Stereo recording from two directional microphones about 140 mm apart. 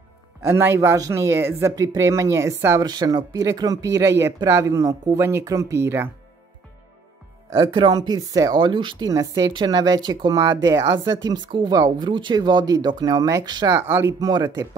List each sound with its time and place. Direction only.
0.4 s speech: 20° right (ahead or behind)
2.8 s speech: 30° right (ahead or behind)
7.5 s speech: 35° right (ahead or behind)
13.7 s speech: 20° right (ahead or behind)